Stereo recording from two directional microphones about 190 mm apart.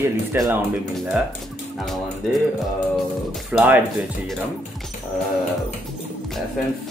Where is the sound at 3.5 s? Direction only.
10° right (ahead or behind).